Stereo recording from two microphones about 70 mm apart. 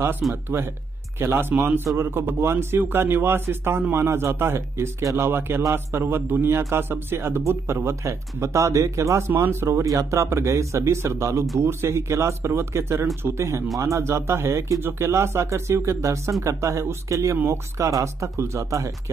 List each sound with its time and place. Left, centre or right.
0.2 s speech: centre
1.2 s a man's voice: right
9.3 s a man's voice: right